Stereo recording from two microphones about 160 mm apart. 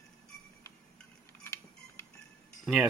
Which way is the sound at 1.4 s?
15° left (ahead or behind).